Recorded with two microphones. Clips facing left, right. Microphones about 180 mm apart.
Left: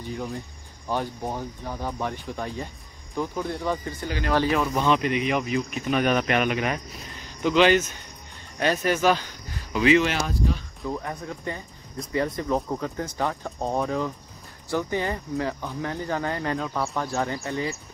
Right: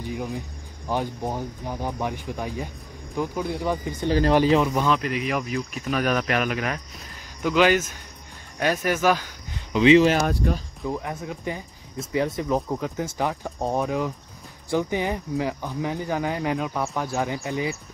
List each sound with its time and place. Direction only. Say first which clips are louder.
0.0 s speech: right 2 dB; 10° right (ahead or behind)
4.0 s speech: right 9 dB; 35° right (ahead or behind)
4.3 s speech: right 2 dB; 20° right (ahead or behind)
4.8 s speech: left 1 dB; centre (ahead or behind)
9.7 s speech: right 4 dB; 20° right (ahead or behind)
10.2 s speech: right 4 dB; 60° right (ahead or behind)
10.9 s speech: right 1 dB; 5° right (ahead or behind)